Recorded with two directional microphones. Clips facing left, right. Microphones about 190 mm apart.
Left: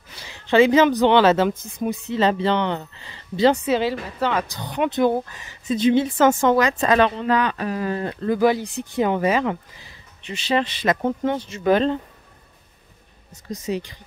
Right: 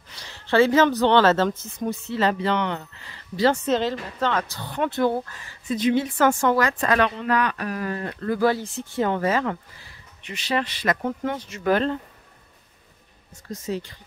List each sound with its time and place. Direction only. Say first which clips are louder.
0.2 s speech: left 3 dB; 15° left (ahead or behind)
3.6 s speech: left 2 dB; 10° left (ahead or behind)
10.2 s speech: left 4 dB; 25° left (ahead or behind)
13.3 s speech: left 3 dB; 15° left (ahead or behind)